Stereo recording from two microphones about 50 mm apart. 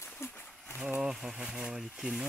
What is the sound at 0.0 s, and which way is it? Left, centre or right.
Wild animals, left.